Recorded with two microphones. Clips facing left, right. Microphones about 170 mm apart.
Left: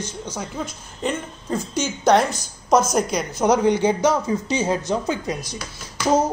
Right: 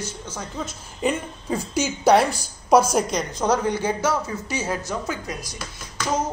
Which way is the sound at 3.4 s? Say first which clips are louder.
Left 5 dB; 15° left (ahead or behind).